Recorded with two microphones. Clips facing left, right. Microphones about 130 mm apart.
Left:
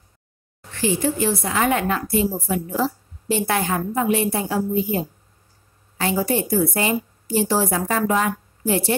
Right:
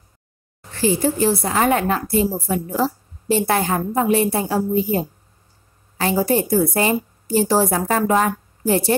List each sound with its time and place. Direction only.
0.7 s a woman's voice: 35° right (ahead or behind)